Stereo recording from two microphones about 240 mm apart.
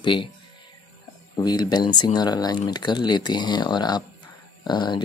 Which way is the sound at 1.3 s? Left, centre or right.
Centre.